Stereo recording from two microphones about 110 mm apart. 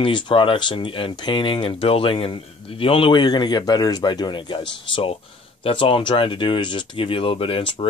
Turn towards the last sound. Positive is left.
turn(degrees=55)  # may be behind; listen again after turning